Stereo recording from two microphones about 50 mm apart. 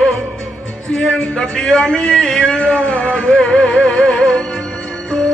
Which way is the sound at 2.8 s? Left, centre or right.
Left.